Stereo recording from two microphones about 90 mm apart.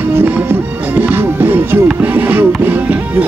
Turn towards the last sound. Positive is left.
turn(degrees=-20)  # may be behind; listen again after turning